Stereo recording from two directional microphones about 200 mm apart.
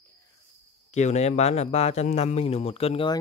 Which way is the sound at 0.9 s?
35° left (ahead or behind).